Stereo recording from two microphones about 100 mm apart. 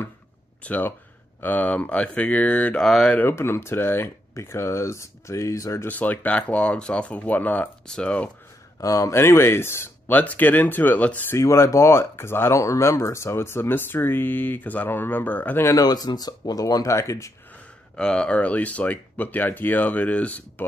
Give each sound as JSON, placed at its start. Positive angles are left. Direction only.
{"t": 0.7, "sound": "speech", "side_deg": 15}
{"t": 3.2, "sound": "speech", "side_deg": 25}
{"t": 5.9, "sound": "speech", "side_deg": 15}
{"t": 8.8, "sound": "speech", "side_deg": 35}
{"t": 11.3, "sound": "speech", "side_deg": 30}
{"t": 15.6, "sound": "speech", "side_deg": 40}
{"t": 17.9, "sound": "speech", "side_deg": 10}